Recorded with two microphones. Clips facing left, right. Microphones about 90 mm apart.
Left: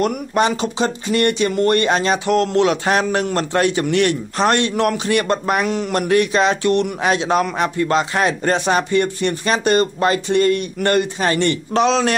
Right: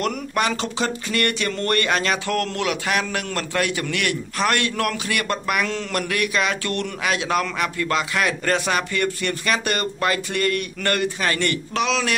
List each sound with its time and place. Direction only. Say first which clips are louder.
0.0 s a man's voice: left 5 dB; 25° left (ahead or behind)
6.0 s a man's voice: left 9 dB; 30° left (ahead or behind)